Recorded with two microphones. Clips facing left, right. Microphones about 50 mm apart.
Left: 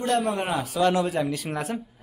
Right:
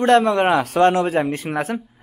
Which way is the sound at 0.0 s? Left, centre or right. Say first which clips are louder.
Right 10 dB; right.